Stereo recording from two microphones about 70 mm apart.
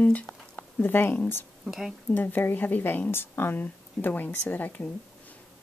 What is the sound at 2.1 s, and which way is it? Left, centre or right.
A woman's voice, left.